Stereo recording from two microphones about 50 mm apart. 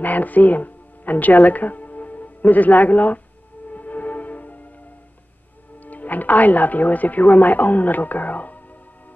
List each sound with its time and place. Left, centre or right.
0.0 s speech: left
3.6 s music: left
5.8 s speech: left